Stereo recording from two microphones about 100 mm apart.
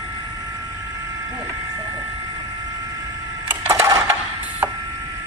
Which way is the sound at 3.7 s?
30° right (ahead or behind).